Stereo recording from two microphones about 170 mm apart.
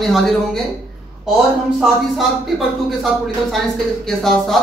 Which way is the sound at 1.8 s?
Centre (ahead or behind).